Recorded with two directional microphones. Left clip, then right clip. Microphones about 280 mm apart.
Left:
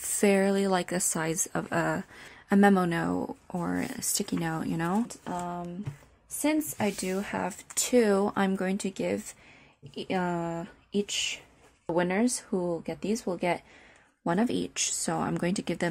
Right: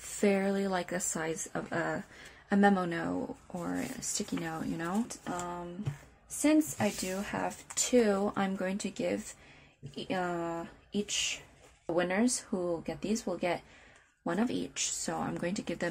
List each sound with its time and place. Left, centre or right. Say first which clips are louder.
0.0 s speech: left 5 dB; left